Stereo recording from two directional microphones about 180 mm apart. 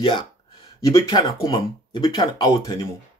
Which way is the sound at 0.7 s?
20° left (ahead or behind).